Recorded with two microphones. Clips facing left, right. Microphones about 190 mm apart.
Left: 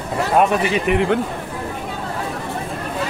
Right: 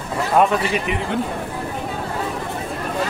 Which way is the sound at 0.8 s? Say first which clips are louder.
Left 6 dB; 60° left (ahead or behind).